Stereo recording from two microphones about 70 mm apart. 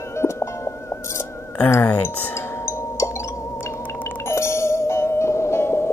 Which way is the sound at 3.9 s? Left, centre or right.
Left.